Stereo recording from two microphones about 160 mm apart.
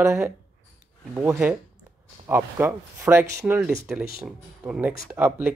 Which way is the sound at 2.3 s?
15° right (ahead or behind).